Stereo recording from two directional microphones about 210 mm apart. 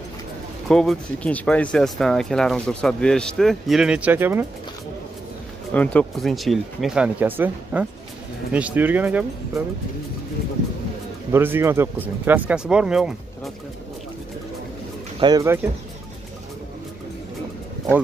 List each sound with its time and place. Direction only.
0.7 s speech: centre (ahead or behind)
5.7 s speech: 5° left (ahead or behind)
11.3 s speech: 10° right (ahead or behind)
15.1 s speech: 20° right (ahead or behind)